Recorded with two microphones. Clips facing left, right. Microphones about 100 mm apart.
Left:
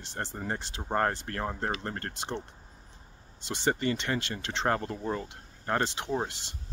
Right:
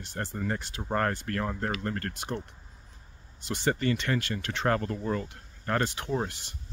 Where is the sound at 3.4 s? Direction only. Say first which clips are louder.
Right 1 dB; 25° left (ahead or behind).